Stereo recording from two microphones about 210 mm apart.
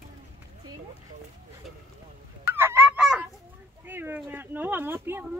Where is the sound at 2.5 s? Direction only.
10° right (ahead or behind).